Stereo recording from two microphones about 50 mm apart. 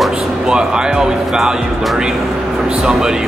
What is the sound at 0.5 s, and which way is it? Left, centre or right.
Speech, centre.